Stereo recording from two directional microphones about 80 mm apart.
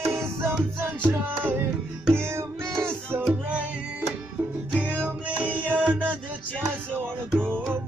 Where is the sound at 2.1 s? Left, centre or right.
Right.